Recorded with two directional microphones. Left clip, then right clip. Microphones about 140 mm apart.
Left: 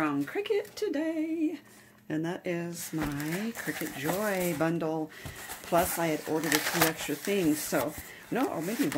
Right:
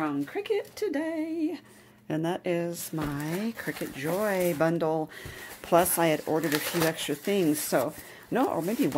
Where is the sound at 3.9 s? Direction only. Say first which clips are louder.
Right 3 dB; 30° right (ahead or behind).